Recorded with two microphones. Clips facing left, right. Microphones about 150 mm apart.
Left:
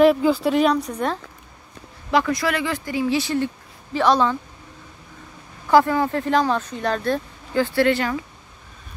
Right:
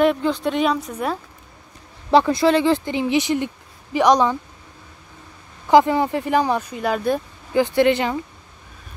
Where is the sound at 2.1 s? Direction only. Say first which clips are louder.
Right 5 dB; 30° right (ahead or behind).